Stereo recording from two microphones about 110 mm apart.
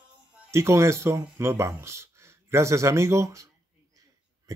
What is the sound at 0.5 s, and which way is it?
Speech, 25° right (ahead or behind).